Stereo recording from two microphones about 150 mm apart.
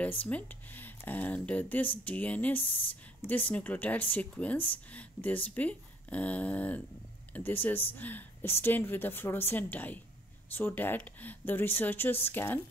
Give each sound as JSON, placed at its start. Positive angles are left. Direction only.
{"t": 0.2, "sound": "speech", "side_deg": 10}
{"t": 2.6, "sound": "speech", "side_deg": 35}
{"t": 3.5, "sound": "speech", "side_deg": 10}